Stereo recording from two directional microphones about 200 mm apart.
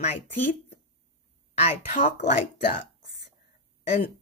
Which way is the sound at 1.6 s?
40° left (ahead or behind).